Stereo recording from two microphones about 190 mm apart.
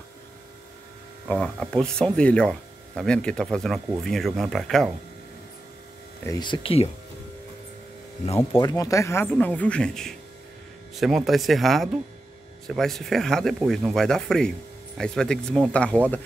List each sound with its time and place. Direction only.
1.2 s speech: 5° left (ahead or behind)
6.4 s speech: 25° left (ahead or behind)
8.4 s speech: 15° left (ahead or behind)